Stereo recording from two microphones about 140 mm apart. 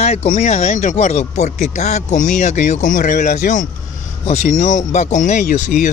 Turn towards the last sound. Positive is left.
turn(degrees=65)  # may be behind; listen again after turning